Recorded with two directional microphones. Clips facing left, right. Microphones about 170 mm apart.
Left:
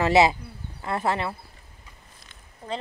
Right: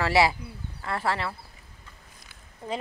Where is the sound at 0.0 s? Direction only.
20° left (ahead or behind).